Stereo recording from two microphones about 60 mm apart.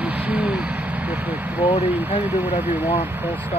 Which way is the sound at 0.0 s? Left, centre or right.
Right.